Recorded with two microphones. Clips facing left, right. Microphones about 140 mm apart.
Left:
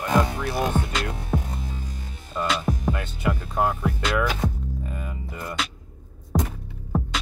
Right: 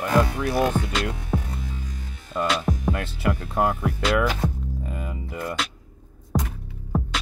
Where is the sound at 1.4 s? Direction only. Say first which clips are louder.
Left 1 dB; 30° left (ahead or behind).